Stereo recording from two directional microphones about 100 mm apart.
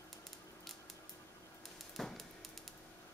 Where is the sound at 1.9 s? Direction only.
Centre (ahead or behind).